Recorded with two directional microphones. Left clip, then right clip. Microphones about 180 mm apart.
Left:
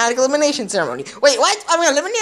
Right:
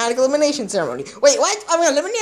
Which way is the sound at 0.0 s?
Centre (ahead or behind).